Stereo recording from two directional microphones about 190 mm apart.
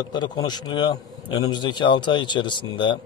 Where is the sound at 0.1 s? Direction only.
25° left (ahead or behind).